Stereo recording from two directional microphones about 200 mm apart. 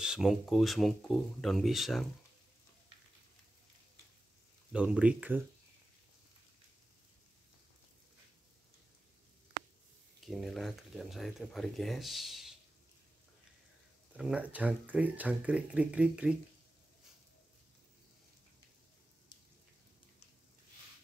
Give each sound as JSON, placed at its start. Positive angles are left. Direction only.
{"t": 0.0, "sound": "speech", "side_deg": -5}
{"t": 4.7, "sound": "speech", "side_deg": -5}
{"t": 10.2, "sound": "speech", "side_deg": 0}
{"t": 14.1, "sound": "speech", "side_deg": -5}